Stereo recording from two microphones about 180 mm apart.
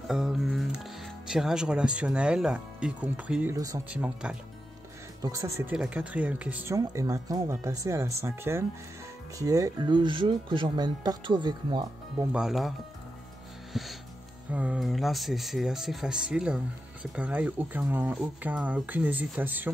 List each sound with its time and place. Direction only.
0.1 s speech: centre (ahead or behind)
3.5 s speech: 20° right (ahead or behind)
3.9 s speech: 5° right (ahead or behind); by 12.3 s 25° right (ahead or behind)
12.3 s speech: 5° right (ahead or behind)
13.7 s speech: centre (ahead or behind)